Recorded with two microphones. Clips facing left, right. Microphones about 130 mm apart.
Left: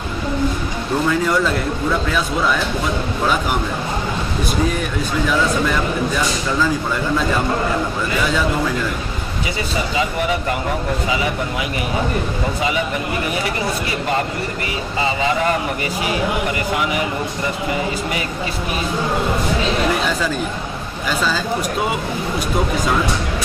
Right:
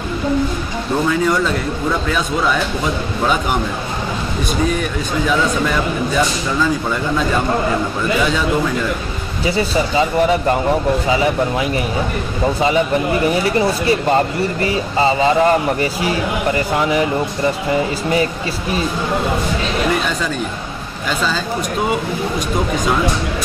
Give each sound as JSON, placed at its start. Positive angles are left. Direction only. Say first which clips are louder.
{"t": 14.6, "sound": "speech", "louder": "right 7 dB", "side_deg": -35}